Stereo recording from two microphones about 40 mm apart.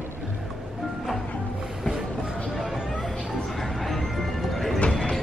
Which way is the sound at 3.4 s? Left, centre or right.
Centre.